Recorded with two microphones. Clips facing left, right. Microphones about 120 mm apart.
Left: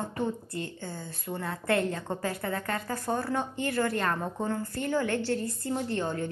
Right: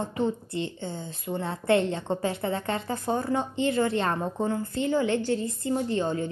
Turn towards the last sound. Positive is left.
turn(degrees=-15)  # may be behind; listen again after turning